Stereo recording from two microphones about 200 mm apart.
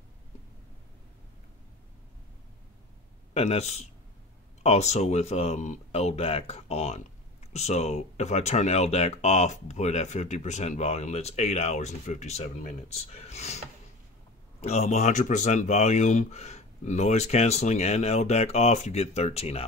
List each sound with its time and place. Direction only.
3.3 s speech: 30° left (ahead or behind)
14.6 s speech: 35° left (ahead or behind)